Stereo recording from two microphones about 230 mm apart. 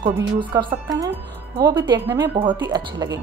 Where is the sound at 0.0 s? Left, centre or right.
Centre.